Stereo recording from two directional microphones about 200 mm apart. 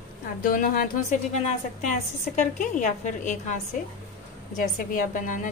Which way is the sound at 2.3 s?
40° left (ahead or behind).